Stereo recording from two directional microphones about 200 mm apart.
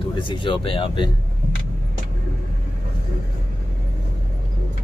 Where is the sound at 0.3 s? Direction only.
25° left (ahead or behind).